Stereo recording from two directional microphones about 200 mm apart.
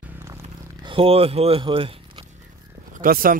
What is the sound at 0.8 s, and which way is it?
Speech, 25° right (ahead or behind).